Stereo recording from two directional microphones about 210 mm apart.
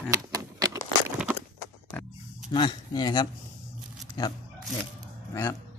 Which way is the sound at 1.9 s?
5° left (ahead or behind).